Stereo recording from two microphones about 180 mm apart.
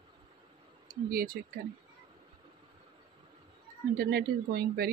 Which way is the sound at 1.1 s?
55° right (ahead or behind).